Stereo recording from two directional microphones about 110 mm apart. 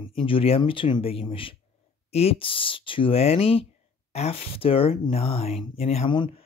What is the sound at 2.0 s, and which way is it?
Speech, 65° left (ahead or behind).